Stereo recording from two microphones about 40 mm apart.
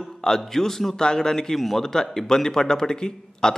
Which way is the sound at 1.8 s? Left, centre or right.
Centre.